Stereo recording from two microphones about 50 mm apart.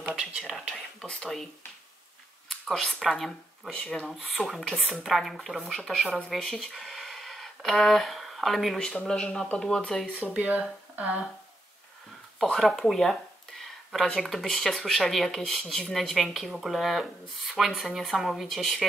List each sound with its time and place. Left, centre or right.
0.0 s a sound: centre
0.4 s speech: centre
0.7 s speech: centre
2.5 s speech: centre
9.0 s speech: centre
10.2 s speech: right
12.4 s speech: centre
12.9 s a sound: centre
14.5 s speech: centre